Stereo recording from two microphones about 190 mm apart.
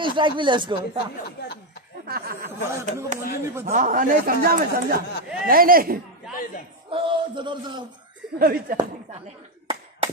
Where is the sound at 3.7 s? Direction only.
45° right (ahead or behind).